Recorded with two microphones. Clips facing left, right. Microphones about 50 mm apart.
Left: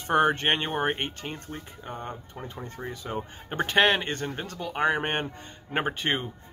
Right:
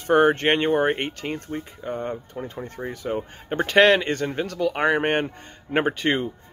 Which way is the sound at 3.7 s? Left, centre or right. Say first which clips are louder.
Right 6 dB; right.